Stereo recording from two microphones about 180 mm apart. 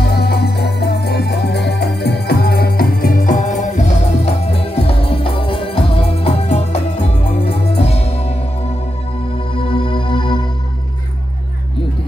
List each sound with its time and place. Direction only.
0.1 s music: 60° left (ahead or behind); by 3.8 s 45° left (ahead or behind)
4.5 s music: 35° left (ahead or behind)
9.6 s music: 30° left (ahead or behind)